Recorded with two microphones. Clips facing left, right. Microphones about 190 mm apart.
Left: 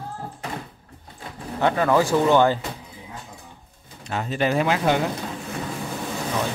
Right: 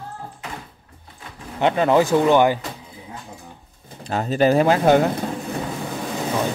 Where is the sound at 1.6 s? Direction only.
20° right (ahead or behind).